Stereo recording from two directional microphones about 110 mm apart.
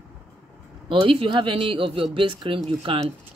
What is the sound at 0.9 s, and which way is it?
Speech, 50° right (ahead or behind).